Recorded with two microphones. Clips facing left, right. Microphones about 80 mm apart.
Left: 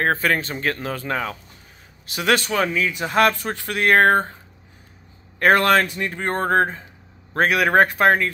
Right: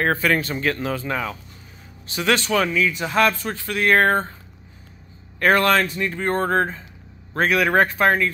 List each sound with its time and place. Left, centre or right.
0.0 s speech: left
0.9 s speech: left
2.6 s speech: left
3.2 s speech: left
5.4 s speech: left
7.3 s speech: left